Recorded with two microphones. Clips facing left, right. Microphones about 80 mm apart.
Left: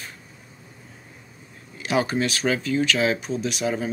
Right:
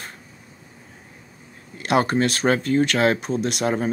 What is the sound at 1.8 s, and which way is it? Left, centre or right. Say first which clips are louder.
Speech: right 3 dB; right.